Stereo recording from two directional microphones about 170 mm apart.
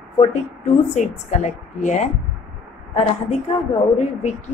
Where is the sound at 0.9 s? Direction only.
45° left (ahead or behind).